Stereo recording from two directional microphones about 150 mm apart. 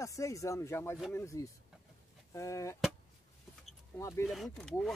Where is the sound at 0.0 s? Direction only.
20° left (ahead or behind).